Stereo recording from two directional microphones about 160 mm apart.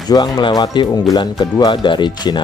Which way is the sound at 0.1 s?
25° left (ahead or behind).